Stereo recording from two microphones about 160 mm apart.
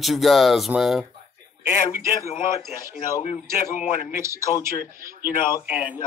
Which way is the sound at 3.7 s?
40° left (ahead or behind).